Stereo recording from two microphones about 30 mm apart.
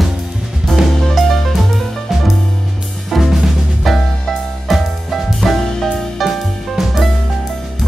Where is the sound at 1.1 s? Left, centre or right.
Centre.